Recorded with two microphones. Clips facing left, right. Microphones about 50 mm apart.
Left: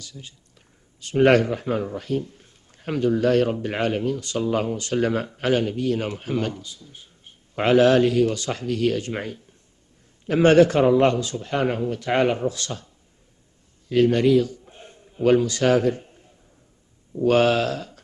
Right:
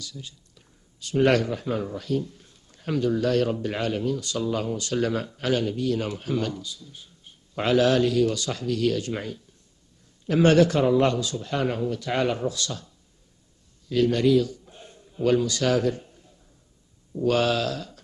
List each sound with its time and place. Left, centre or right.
0.0 s a man's voice: left